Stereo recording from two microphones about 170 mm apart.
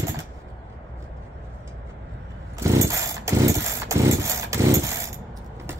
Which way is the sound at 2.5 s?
20° right (ahead or behind).